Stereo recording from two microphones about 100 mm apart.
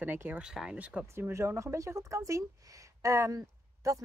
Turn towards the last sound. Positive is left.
turn(degrees=-35)  # may be behind; listen again after turning